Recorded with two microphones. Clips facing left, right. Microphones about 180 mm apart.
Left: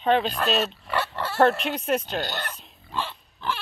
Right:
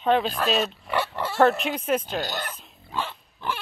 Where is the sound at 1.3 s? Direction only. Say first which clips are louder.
Even; 5° right (ahead or behind).